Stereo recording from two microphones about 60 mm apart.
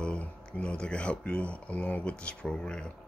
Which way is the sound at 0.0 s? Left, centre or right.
Centre.